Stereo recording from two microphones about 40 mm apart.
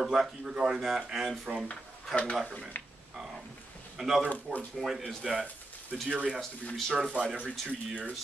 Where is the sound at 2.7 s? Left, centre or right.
Left.